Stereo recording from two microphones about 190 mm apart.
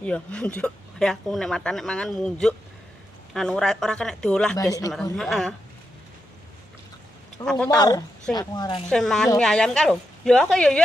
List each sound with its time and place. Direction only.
0.0 s speech: 5° left (ahead or behind)
7.4 s a woman's voice: 5° left (ahead or behind)
7.7 s a woman's voice: 20° left (ahead or behind)
8.8 s speech: 5° left (ahead or behind)